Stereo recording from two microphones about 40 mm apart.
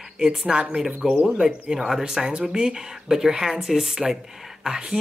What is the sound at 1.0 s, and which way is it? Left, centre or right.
Speech, centre.